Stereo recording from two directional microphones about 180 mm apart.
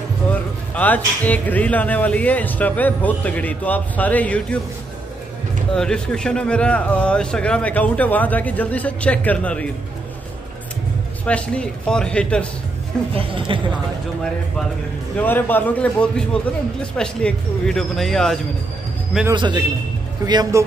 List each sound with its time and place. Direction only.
0.3 s speech: 10° left (ahead or behind)
5.8 s speech: 5° left (ahead or behind)
11.2 s speech: 5° left (ahead or behind)
13.1 s speech: 30° right (ahead or behind)
15.2 s speech: 10° left (ahead or behind)
19.3 s speech: 25° right (ahead or behind)